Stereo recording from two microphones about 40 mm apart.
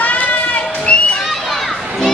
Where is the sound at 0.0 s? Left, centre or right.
Left.